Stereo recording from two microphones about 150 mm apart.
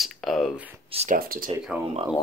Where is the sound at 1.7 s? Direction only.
5° right (ahead or behind).